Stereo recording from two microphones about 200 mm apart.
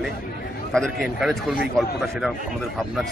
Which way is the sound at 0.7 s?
Centre (ahead or behind).